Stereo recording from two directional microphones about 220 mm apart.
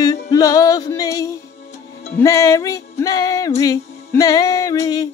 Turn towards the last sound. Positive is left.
turn(degrees=15)  # may be behind; listen again after turning